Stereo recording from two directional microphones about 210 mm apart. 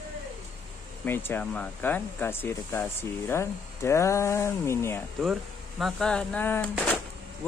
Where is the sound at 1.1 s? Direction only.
10° left (ahead or behind).